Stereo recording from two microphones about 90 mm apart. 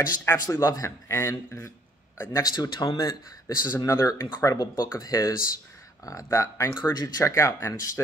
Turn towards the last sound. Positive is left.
turn(degrees=35)  # may be behind; listen again after turning